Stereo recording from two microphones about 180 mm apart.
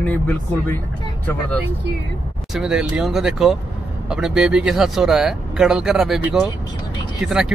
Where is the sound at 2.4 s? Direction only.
Centre (ahead or behind).